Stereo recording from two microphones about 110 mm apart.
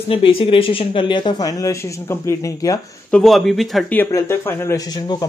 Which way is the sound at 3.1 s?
Centre (ahead or behind).